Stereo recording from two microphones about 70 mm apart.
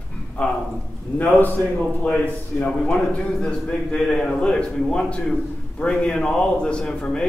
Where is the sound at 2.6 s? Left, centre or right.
Centre.